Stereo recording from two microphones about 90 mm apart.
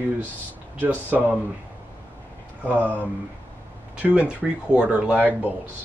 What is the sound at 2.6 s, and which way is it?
Speech, 20° right (ahead or behind).